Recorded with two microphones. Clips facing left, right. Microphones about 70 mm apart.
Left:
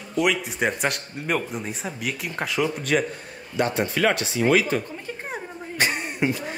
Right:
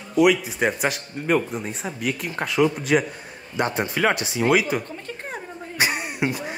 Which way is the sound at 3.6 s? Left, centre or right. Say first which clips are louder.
Even; right.